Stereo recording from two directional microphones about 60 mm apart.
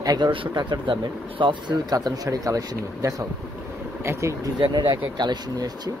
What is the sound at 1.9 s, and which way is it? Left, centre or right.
Speech, right.